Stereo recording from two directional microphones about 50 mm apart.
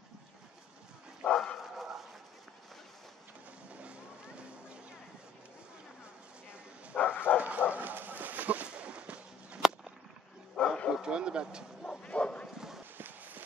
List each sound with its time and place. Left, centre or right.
1.2 s bow-wow: centre
3.8 s a sound: right
7.0 s bow-wow: left
7.3 s dog: right
7.7 s a sound: right
10.5 s bow-wow: centre
10.9 s bow-wow: centre
11.8 s bow-wow: left
12.5 s clip-clop: centre
12.9 s clip-clop: right